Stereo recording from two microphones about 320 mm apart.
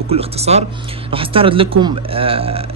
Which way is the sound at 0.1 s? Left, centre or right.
Centre.